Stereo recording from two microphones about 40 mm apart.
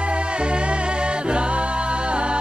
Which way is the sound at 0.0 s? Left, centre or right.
Right.